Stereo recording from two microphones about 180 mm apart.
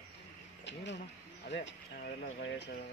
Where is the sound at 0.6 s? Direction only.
80° left.